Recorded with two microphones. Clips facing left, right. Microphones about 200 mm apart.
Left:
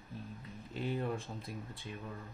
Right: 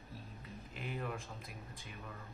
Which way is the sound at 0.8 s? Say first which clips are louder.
Left 6 dB; 30° left (ahead or behind).